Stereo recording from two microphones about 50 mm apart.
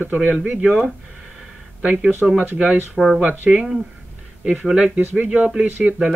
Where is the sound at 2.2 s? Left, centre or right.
Centre.